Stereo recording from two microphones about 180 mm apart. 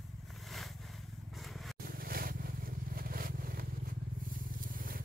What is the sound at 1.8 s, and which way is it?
Vehicle, 55° right (ahead or behind).